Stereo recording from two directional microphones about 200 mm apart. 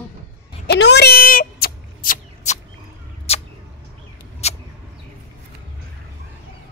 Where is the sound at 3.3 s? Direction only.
30° left (ahead or behind).